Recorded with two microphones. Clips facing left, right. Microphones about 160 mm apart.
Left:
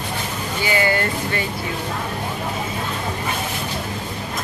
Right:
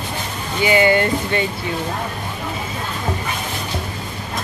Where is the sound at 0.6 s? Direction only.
20° right (ahead or behind).